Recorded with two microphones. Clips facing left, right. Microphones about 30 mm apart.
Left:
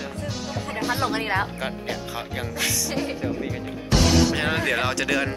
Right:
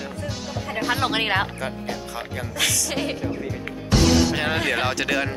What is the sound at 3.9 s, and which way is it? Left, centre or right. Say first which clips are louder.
Music: right 1 dB; centre.